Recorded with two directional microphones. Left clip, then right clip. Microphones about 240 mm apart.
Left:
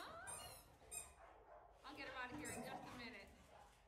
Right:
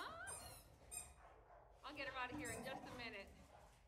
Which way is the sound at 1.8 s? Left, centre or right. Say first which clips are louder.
Right 3 dB; centre.